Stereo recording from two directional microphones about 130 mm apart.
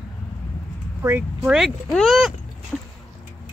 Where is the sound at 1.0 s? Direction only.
15° right (ahead or behind).